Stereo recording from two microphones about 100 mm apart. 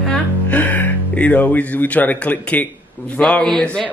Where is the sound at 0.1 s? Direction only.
15° left (ahead or behind).